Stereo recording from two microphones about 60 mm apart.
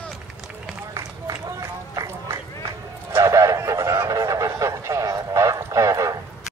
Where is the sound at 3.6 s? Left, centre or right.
Right.